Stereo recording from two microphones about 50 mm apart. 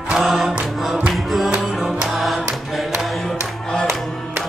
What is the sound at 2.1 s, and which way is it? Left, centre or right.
Music, centre.